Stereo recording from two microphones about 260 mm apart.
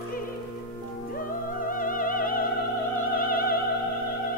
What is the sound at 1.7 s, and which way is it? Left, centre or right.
Music, left.